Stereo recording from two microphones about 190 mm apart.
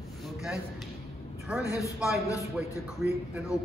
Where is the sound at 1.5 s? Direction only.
5° right (ahead or behind).